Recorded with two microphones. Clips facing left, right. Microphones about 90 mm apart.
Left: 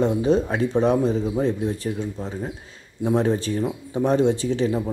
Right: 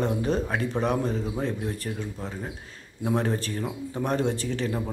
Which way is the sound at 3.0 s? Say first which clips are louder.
Left 5 dB; 25° left (ahead or behind).